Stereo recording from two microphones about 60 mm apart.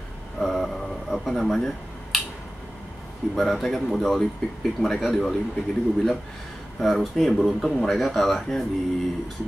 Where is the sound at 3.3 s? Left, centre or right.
Centre.